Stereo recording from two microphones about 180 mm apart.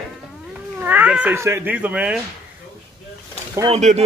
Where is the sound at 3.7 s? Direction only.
40° right (ahead or behind).